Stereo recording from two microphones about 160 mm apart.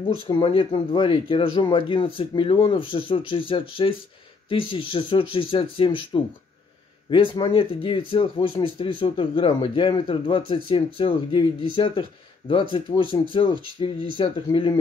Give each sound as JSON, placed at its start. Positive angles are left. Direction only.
{"t": 0.3, "sound": "speech", "side_deg": 35}